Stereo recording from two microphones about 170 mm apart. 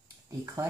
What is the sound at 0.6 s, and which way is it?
Speech, 15° right (ahead or behind).